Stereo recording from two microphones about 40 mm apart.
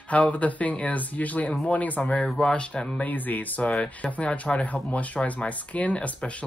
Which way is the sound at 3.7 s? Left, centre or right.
Left.